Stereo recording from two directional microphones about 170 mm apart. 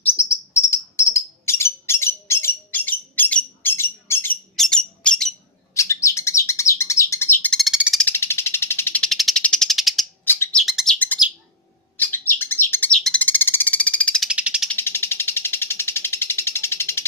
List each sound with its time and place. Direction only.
0.0 s bird: 15° left (ahead or behind)
4.6 s a sound: 5° left (ahead or behind)
5.8 s bird: 15° left (ahead or behind)
7.4 s bird: centre (ahead or behind)
8.0 s frog: 15° left (ahead or behind)
10.2 s bird: 15° left (ahead or behind)
10.6 s bird: centre (ahead or behind)
12.0 s bird: 10° left (ahead or behind)
14.3 s frog: 5° right (ahead or behind)
14.7 s a sound: 15° left (ahead or behind)